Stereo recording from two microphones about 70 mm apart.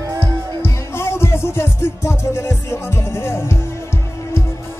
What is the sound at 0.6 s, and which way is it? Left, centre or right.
Music, left.